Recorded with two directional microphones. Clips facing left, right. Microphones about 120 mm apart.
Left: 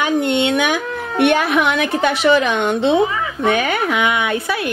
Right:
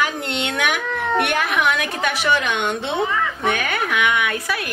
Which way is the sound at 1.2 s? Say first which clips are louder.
Left 11 dB; 25° left (ahead or behind).